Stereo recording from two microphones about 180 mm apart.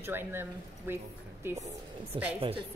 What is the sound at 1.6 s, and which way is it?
Speech, 40° right (ahead or behind).